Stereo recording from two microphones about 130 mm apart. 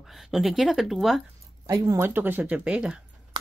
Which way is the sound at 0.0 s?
Centre (ahead or behind).